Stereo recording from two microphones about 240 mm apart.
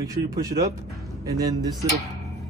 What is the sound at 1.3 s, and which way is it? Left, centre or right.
Speech, centre.